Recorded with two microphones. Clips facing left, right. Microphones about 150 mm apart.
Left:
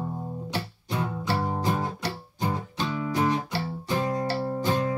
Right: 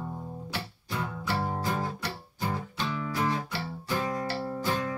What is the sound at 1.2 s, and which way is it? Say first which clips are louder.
Music: left 3 dB; 25° left (ahead or behind).